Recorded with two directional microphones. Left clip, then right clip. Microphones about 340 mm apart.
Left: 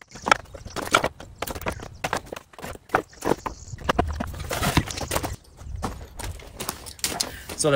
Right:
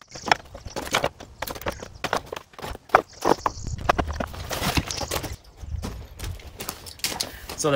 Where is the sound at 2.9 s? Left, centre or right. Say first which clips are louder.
Right 5 dB; centre.